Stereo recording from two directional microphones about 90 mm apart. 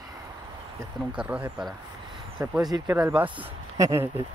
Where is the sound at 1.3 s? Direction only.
20° right (ahead or behind).